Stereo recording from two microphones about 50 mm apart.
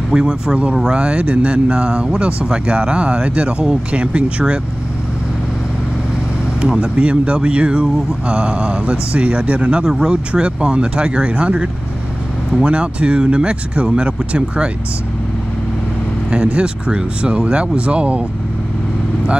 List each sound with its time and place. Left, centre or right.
0.1 s speech: centre
6.6 s speech: right
16.3 s speech: right